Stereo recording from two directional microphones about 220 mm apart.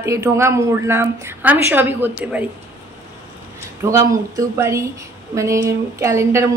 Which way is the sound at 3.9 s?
15° right (ahead or behind).